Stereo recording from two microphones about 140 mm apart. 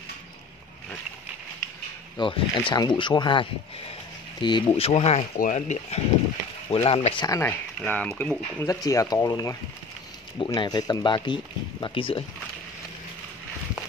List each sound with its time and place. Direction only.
2.1 s speech: 35° left (ahead or behind)
5.4 s speech: 60° left (ahead or behind)
6.7 s speech: 45° left (ahead or behind)
7.2 s speech: 25° left (ahead or behind)
7.4 s speech: 10° left (ahead or behind)
8.5 s speech: 25° left (ahead or behind); by 12.2 s 40° left (ahead or behind)